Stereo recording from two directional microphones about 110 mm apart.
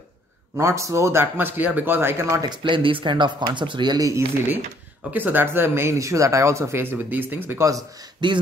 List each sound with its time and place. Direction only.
0.6 s speech: 30° right (ahead or behind)
2.4 s speech: 45° right (ahead or behind)
5.1 s speech: 15° right (ahead or behind)
8.2 s speech: 45° right (ahead or behind)